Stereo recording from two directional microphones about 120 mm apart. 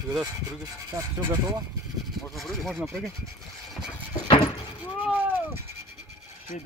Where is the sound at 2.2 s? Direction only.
Centre (ahead or behind).